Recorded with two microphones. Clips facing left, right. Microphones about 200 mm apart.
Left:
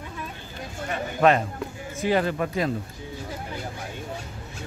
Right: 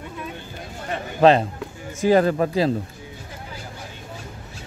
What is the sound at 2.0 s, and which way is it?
Speech, 40° right (ahead or behind).